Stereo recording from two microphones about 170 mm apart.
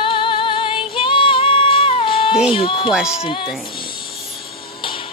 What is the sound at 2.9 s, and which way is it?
Speech, 5° right (ahead or behind).